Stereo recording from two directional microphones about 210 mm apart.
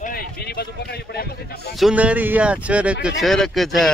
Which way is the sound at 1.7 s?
5° right (ahead or behind).